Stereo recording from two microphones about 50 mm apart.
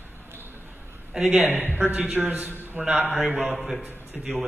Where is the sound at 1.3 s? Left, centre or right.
Right.